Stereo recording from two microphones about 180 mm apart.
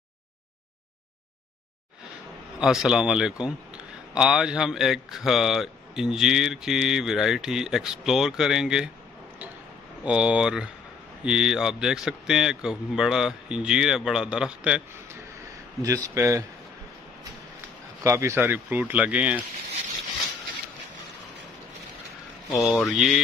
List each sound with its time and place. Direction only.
2.6 s speech: 5° right (ahead or behind)
10.0 s speech: 5° right (ahead or behind)
15.8 s speech: 15° right (ahead or behind)
18.0 s speech: 15° right (ahead or behind)
22.7 s speech: centre (ahead or behind)